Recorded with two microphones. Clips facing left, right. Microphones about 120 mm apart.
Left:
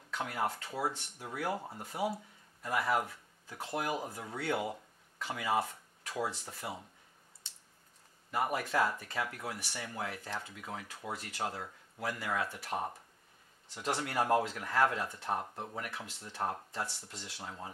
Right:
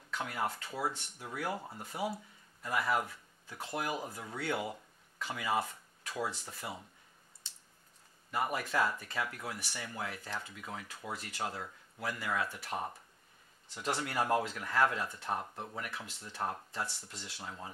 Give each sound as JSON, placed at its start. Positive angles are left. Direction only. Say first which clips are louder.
{"t": 0.1, "sound": "speech", "louder": "left 1 dB", "side_deg": 40}
{"t": 1.6, "sound": "speech", "louder": "left 1 dB", "side_deg": 25}
{"t": 2.6, "sound": "speech", "louder": "left 1 dB", "side_deg": 40}
{"t": 3.7, "sound": "speech", "louder": "left 2 dB", "side_deg": 45}
{"t": 4.0, "sound": "speech", "louder": "left 1 dB", "side_deg": 30}
{"t": 4.4, "sound": "speech", "louder": "left 2 dB", "side_deg": 45}
{"t": 8.3, "sound": "speech", "louder": "left 1 dB", "side_deg": 35}
{"t": 11.1, "sound": "speech", "louder": "left 1 dB", "side_deg": 50}
{"t": 11.5, "sound": "speech", "louder": "even", "side_deg": 35}
{"t": 14.0, "sound": "speech", "louder": "left 2 dB", "side_deg": 45}
{"t": 15.8, "sound": "speech", "louder": "left 1 dB", "side_deg": 40}